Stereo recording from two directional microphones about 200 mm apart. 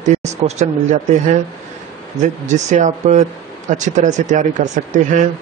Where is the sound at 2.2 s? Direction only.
35° right (ahead or behind).